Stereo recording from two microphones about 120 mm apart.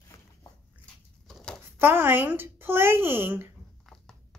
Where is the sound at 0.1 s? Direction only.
25° left (ahead or behind).